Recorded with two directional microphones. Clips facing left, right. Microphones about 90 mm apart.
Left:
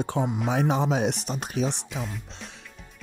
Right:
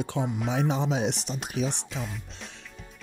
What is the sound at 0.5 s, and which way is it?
Speech, 50° left (ahead or behind).